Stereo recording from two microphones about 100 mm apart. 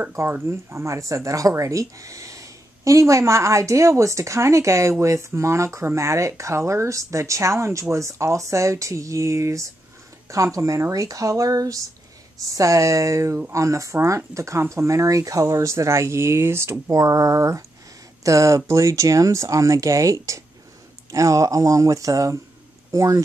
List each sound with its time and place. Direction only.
0.1 s speech: 25° right (ahead or behind)